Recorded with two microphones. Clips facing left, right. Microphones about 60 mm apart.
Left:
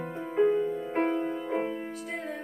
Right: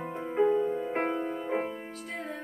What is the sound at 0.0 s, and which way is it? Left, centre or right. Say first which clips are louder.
Music: left 1 dB; centre.